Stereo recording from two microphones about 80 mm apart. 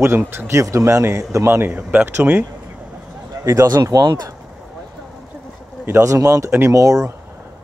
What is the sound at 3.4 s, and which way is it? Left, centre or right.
Speech, right.